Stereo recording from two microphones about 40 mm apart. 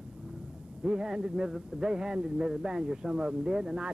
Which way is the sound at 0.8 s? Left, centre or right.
Centre.